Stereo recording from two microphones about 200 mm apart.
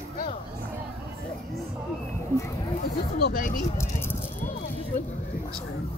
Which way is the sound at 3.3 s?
45° left (ahead or behind).